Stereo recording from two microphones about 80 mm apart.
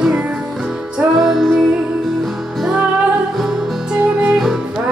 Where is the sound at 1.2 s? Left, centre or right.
Centre.